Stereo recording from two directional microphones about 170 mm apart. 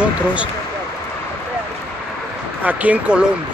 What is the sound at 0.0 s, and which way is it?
Speech, 5° right (ahead or behind).